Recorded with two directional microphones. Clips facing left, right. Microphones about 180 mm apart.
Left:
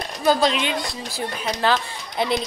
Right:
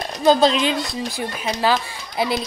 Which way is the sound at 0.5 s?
35° right (ahead or behind).